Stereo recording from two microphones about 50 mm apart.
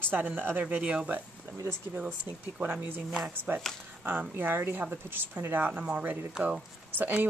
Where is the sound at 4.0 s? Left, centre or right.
Right.